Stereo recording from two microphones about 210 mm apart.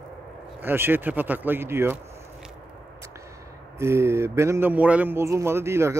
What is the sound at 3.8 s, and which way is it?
Speech, 10° right (ahead or behind).